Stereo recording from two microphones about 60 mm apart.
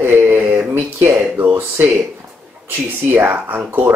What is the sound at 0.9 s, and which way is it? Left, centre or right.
Speech, right.